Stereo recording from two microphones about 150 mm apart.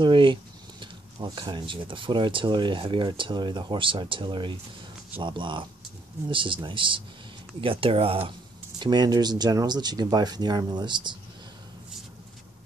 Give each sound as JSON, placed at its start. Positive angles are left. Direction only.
{"t": 0.0, "sound": "speech", "side_deg": -35}